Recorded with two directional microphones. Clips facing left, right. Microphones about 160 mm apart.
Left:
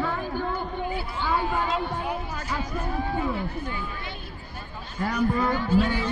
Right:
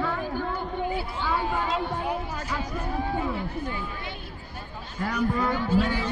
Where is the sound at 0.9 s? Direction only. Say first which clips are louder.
Right 1 dB; 30° right (ahead or behind).